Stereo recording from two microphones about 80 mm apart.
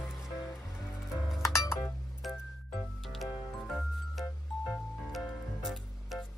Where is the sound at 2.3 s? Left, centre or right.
Centre.